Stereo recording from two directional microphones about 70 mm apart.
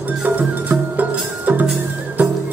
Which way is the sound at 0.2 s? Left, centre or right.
Right.